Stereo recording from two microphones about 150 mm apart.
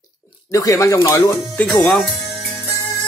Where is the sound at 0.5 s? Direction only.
20° left (ahead or behind).